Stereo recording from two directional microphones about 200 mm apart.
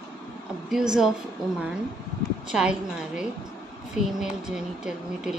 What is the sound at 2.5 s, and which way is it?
Speech, 5° right (ahead or behind).